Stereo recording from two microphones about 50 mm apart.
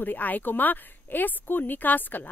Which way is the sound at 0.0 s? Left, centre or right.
Left.